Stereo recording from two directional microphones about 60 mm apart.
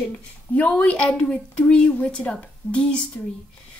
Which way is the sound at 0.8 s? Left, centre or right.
Centre.